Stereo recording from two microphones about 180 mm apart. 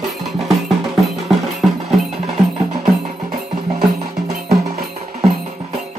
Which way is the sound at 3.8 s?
35° right (ahead or behind).